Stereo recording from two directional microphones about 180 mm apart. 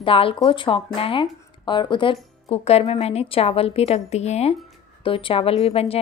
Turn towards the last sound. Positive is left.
turn(degrees=35)  # may be behind; listen again after turning